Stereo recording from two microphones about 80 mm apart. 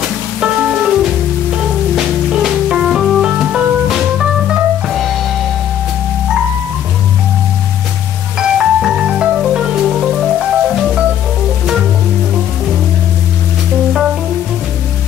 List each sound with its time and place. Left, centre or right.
0.4 s music: centre
2.0 s music: centre
8.4 s music: centre